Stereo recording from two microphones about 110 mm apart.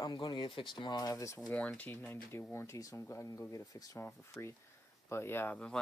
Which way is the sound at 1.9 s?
20° left (ahead or behind).